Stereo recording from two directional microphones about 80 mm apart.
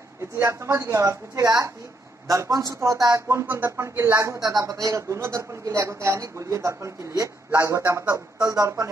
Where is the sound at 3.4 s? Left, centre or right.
Right.